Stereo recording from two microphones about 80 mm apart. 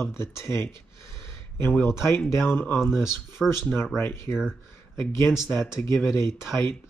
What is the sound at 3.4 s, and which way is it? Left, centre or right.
Speech, centre.